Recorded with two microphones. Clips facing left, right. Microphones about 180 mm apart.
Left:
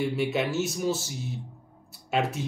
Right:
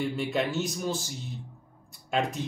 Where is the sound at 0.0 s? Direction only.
5° left (ahead or behind).